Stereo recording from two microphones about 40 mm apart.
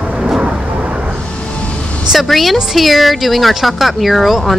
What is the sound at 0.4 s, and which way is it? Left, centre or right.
Vehicle, right.